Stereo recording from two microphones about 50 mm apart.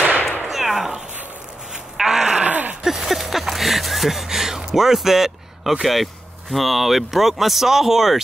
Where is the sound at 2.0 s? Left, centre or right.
Centre.